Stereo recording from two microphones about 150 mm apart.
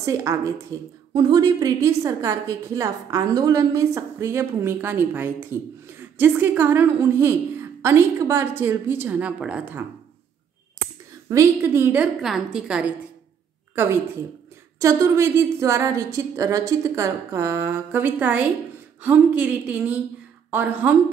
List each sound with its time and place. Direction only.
0.0 s a woman's voice: 20° right (ahead or behind)
11.2 s a woman's voice: 20° right (ahead or behind)
12.2 s a woman's voice: centre (ahead or behind)
14.8 s a woman's voice: 20° right (ahead or behind)